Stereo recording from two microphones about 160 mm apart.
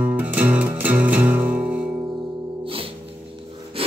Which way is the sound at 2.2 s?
35° right (ahead or behind).